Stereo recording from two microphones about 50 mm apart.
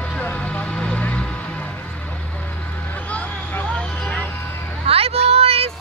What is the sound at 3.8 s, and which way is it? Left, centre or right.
Vehicle, left.